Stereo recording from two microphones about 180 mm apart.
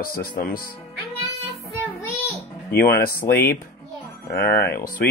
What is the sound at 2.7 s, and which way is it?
Speech, 60° left (ahead or behind).